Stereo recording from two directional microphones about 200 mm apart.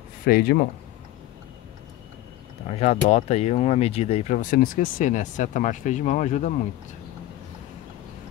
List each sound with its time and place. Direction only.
0.2 s speech: 50° left (ahead or behind)
2.7 s speech: 35° left (ahead or behind)